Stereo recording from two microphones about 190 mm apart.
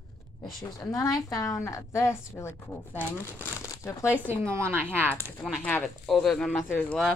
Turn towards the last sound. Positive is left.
turn(degrees=5)  # may be behind; listen again after turning